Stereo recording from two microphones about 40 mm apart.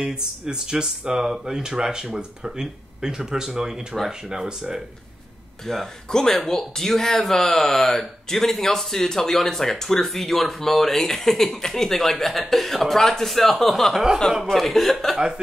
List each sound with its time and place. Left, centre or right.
0.0 s speech: centre
5.7 s speech: centre